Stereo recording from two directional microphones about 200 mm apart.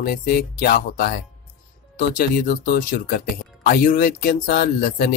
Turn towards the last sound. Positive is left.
turn(degrees=45)  # may be behind; listen again after turning